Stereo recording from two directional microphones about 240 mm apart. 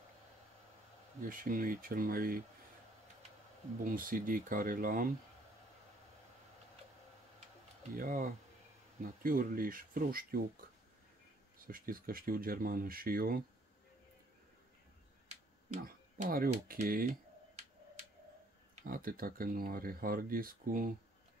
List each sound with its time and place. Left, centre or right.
1.2 s speech: right
3.8 s speech: right
7.9 s speech: right
11.5 s speech: right
15.2 s speech: right
18.8 s speech: right